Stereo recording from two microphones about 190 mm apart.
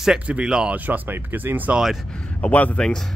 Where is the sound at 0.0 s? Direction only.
5° right (ahead or behind).